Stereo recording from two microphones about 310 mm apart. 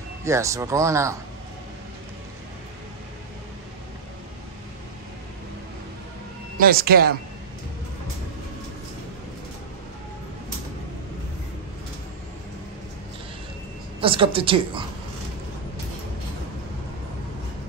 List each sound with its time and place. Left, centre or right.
0.2 s speech: centre
6.6 s speech: right
14.0 s speech: centre